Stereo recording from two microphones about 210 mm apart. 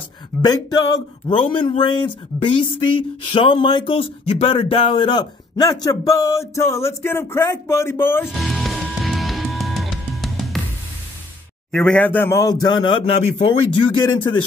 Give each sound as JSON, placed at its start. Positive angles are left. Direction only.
{"t": 0.4, "sound": "speech", "side_deg": 20}
{"t": 8.3, "sound": "music", "side_deg": 0}
{"t": 11.7, "sound": "speech", "side_deg": 5}